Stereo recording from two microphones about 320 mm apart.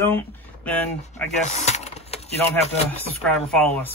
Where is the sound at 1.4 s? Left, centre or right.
Left.